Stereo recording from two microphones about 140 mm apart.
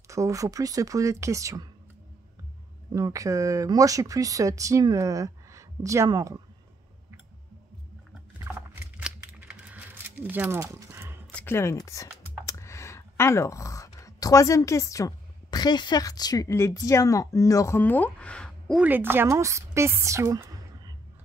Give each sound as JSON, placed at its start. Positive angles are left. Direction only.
{"t": 0.1, "sound": "speech", "side_deg": -20}
{"t": 2.9, "sound": "speech", "side_deg": -25}
{"t": 9.0, "sound": "a sound", "side_deg": -10}
{"t": 11.3, "sound": "speech", "side_deg": 15}
{"t": 18.8, "sound": "a woman's voice", "side_deg": -15}